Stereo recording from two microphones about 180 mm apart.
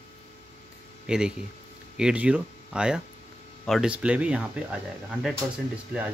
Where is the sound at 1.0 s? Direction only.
5° right (ahead or behind).